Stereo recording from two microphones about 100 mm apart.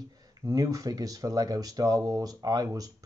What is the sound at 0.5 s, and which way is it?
Speech, 35° right (ahead or behind).